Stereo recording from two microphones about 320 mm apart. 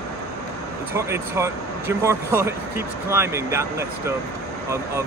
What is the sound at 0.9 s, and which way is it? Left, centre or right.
Speech, centre.